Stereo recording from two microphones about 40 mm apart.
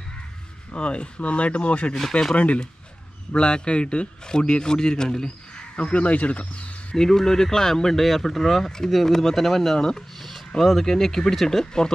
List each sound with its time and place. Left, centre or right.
0.7 s a man's voice: left
3.3 s a man's voice: left
7.0 s speech: centre